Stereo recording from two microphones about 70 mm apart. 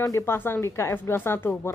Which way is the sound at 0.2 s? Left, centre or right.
Left.